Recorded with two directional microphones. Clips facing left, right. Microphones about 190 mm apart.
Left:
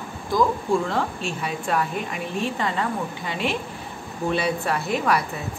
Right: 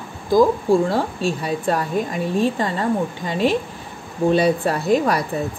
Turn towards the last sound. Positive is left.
turn(degrees=-35)  # may be behind; listen again after turning